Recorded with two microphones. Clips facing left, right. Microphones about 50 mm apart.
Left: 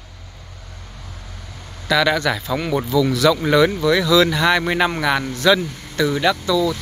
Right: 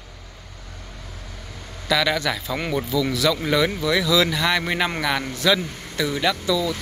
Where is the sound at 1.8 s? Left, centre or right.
Centre.